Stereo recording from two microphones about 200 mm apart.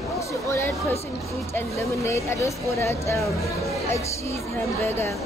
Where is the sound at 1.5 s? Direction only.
15° left (ahead or behind).